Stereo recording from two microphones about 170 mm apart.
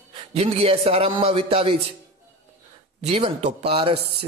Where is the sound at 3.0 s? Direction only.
40° right (ahead or behind).